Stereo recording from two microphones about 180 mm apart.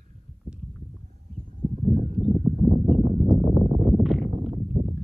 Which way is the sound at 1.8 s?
40° right (ahead or behind).